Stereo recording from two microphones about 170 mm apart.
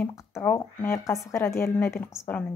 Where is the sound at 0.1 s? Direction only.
15° left (ahead or behind).